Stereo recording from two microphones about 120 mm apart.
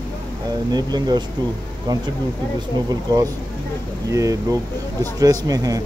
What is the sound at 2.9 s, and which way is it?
A man's voice, 30° right (ahead or behind).